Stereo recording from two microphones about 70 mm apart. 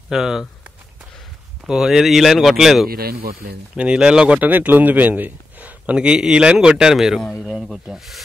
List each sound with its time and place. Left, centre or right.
0.1 s speech: centre
1.7 s speech: centre
3.7 s speech: centre